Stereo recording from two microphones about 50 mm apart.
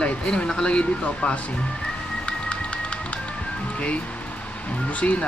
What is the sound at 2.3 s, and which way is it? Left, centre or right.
Music, left.